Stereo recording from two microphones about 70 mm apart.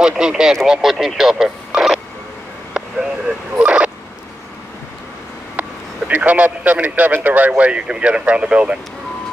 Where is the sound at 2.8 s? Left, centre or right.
Centre.